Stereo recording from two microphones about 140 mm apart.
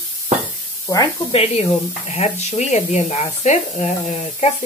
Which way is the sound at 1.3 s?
50° left (ahead or behind).